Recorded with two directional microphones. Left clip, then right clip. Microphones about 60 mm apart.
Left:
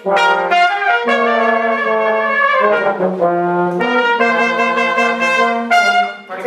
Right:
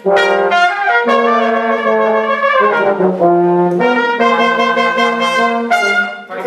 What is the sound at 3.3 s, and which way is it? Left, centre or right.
Brass instrument, left.